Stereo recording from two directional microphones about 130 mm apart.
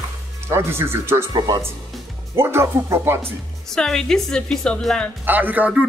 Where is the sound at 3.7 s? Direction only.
5° left (ahead or behind).